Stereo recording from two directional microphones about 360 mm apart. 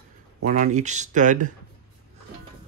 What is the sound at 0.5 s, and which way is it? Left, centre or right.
Speech, centre.